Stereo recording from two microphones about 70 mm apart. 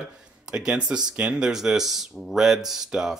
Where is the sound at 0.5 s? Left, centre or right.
Centre.